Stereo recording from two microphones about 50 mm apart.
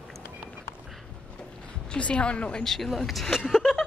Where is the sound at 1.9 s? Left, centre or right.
Left.